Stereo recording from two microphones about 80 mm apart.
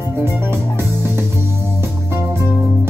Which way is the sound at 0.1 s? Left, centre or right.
Right.